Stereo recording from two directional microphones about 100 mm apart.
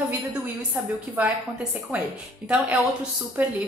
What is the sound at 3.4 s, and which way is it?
Speech, 15° right (ahead or behind).